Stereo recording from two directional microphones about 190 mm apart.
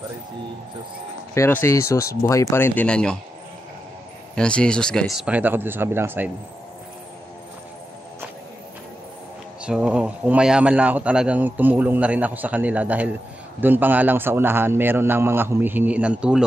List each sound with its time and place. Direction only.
1.3 s speech: 15° left (ahead or behind)
4.4 s a man's voice: 5° left (ahead or behind); by 6.3 s 10° right (ahead or behind)
9.6 s a man's voice: 5° right (ahead or behind)